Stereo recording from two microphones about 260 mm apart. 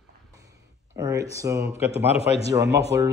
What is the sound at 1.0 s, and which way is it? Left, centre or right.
Speech, centre.